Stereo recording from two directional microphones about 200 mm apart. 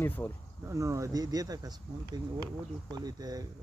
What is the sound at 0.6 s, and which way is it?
Speech, 15° right (ahead or behind).